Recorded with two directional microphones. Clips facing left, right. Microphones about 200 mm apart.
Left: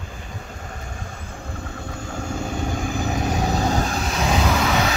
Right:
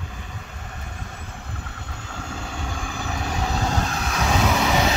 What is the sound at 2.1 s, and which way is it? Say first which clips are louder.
Vehicle: left 6 dB; 45° left (ahead or behind).